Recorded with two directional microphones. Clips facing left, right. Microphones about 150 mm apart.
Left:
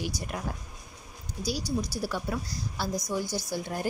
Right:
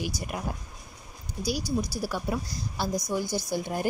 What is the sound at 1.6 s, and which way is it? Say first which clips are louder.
Speech: right 2 dB; 15° left (ahead or behind).